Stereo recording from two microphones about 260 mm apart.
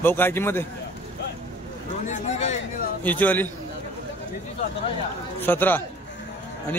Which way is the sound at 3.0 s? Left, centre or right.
Centre.